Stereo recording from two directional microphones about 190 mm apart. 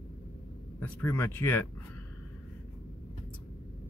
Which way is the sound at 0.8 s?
10° left (ahead or behind).